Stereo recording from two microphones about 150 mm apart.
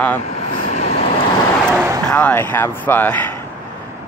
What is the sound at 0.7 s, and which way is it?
Vehicle, 45° left (ahead or behind).